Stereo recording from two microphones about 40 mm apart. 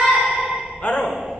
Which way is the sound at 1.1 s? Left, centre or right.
Centre.